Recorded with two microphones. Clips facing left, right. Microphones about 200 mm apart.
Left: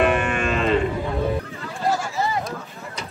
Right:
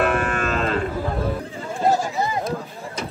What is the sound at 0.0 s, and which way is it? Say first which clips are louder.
Moo: left 1 dB; centre (ahead or behind).